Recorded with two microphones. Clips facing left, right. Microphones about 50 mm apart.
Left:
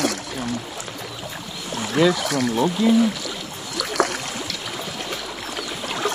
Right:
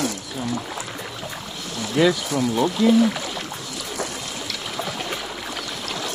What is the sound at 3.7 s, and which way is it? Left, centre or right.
Boat, left.